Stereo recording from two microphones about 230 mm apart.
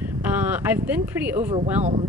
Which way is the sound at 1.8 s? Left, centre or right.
Right.